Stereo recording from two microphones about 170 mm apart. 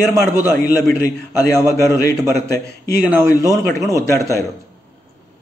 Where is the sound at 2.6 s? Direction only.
15° right (ahead or behind).